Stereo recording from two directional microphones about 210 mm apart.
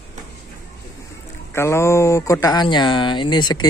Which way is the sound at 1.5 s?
15° left (ahead or behind).